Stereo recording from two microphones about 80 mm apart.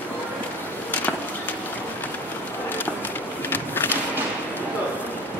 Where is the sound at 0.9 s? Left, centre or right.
Centre.